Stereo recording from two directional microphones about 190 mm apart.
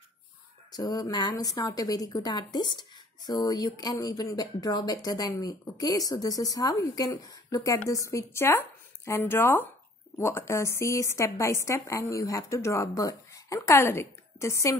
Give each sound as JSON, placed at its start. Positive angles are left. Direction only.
{"t": 0.7, "sound": "speech", "side_deg": 20}